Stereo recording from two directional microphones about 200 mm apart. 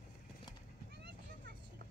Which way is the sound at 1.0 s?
55° right (ahead or behind).